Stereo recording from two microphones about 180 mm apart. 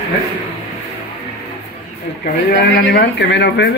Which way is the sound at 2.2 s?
65° left (ahead or behind).